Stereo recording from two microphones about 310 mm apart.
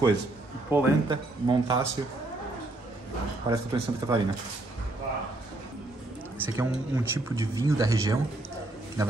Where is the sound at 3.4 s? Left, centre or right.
Centre.